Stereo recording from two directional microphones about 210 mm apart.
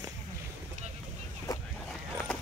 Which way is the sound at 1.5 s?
15° left (ahead or behind).